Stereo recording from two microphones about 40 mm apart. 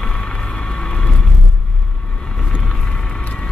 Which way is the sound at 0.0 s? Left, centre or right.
Left.